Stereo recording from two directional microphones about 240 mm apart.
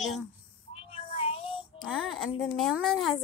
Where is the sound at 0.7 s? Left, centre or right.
Left.